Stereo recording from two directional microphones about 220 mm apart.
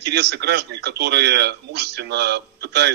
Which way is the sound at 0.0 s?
50° right (ahead or behind).